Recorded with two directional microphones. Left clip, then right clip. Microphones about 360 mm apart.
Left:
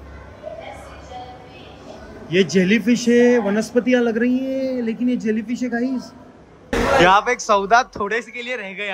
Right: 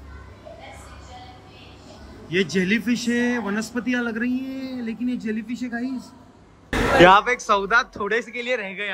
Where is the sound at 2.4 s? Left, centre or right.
Centre.